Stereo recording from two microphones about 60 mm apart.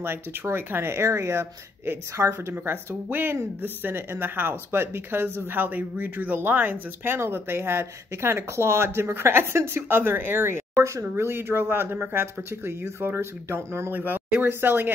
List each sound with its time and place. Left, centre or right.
0.0 s speech: right
7.2 s speech: right
10.8 s speech: right
13.9 s speech: right